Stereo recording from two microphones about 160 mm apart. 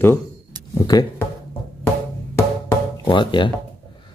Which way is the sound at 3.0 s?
30° left (ahead or behind).